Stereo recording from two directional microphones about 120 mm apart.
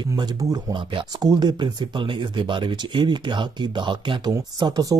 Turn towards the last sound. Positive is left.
turn(degrees=-30)  # may be behind; listen again after turning